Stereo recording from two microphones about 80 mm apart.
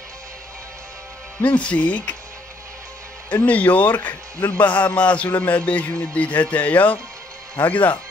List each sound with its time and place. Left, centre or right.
1.4 s speech: centre
3.4 s speech: centre
4.6 s a man's voice: left
4.8 s speech: centre